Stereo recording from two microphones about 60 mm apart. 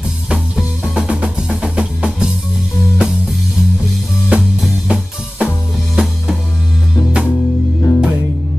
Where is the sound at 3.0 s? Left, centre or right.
Centre.